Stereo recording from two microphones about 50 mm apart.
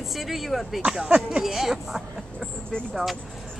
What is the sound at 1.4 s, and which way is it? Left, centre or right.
A woman's voice, centre.